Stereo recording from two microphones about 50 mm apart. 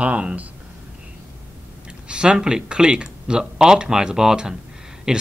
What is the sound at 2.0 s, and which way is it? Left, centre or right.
Speech, centre.